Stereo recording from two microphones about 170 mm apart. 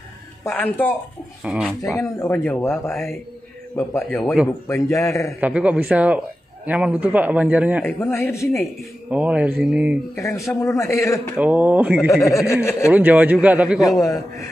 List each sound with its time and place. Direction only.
0.5 s speech: 10° left (ahead or behind)
1.4 s speech: 5° right (ahead or behind)
2.0 s speech: 15° left (ahead or behind)
4.2 s speech: centre (ahead or behind)
4.6 s speech: 20° left (ahead or behind)
5.4 s a man's voice: 5° right (ahead or behind)
7.8 s speech: 15° left (ahead or behind)
9.1 s a man's voice: 10° right (ahead or behind)
10.1 s speech: 15° left (ahead or behind)
11.1 s a man's voice: 10° right (ahead or behind)
13.8 s a man's voice: 20° left (ahead or behind)